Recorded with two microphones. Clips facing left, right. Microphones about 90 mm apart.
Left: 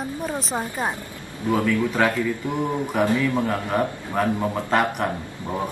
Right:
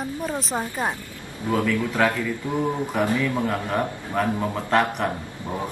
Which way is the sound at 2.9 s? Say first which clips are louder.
Left 4 dB; 20° left (ahead or behind).